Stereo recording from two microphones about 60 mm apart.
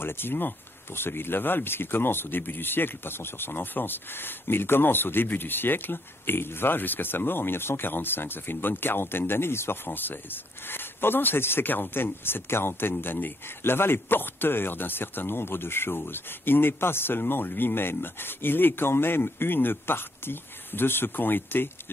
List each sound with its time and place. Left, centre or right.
0.0 s speech: left